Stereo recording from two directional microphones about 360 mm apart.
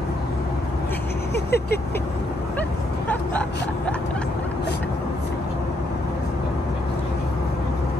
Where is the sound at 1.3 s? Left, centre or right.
Left.